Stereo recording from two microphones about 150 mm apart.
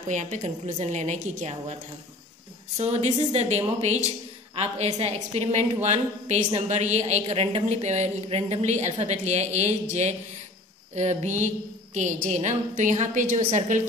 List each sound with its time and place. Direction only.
0.1 s a woman's voice: 50° right (ahead or behind)
2.8 s a woman's voice: 45° right (ahead or behind)
13.4 s a woman's voice: 40° right (ahead or behind)